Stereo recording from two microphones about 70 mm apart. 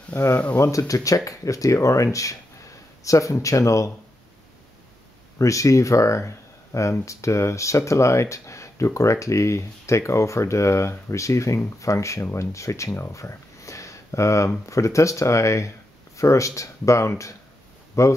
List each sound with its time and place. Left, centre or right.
0.1 s speech: left
0.6 s speech: left
5.4 s speech: left